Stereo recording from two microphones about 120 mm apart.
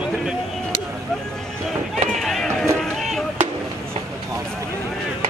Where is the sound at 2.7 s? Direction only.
Centre (ahead or behind).